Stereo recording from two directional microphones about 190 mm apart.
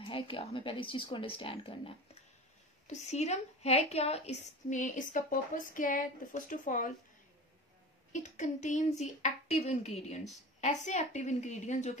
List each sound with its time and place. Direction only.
0.0 s a woman's voice: 30° left (ahead or behind); by 6.9 s 45° left (ahead or behind)
8.1 s speech: 40° left (ahead or behind)